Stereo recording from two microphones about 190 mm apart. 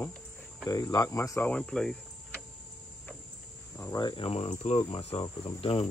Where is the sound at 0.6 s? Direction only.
20° left (ahead or behind); by 1.9 s 5° left (ahead or behind).